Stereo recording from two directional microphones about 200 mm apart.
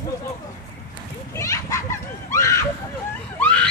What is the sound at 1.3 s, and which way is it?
Children playing, 15° left (ahead or behind).